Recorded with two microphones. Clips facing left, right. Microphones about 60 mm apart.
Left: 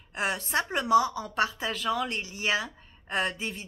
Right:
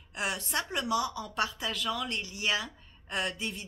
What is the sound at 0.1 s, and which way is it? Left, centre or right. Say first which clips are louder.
A woman's voice: left 4 dB; left.